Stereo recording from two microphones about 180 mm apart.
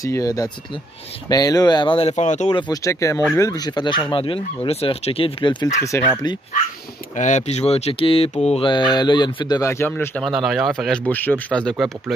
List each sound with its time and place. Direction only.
0.0 s speech: 20° left (ahead or behind); by 2.5 s 40° left (ahead or behind)
2.5 s speech: 20° left (ahead or behind)
7.2 s speech: 40° left (ahead or behind); by 11.7 s 5° left (ahead or behind)